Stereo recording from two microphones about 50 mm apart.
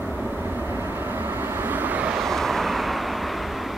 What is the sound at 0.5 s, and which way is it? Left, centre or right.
Vehicle, right.